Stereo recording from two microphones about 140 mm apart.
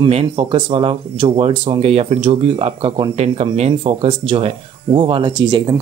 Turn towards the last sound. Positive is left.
turn(degrees=-35)  # may be behind; listen again after turning